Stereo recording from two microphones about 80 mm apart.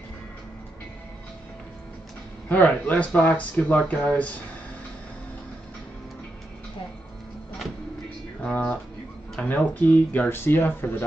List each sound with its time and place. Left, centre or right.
2.4 s speech: centre
8.4 s a sound: centre
9.4 s speech: centre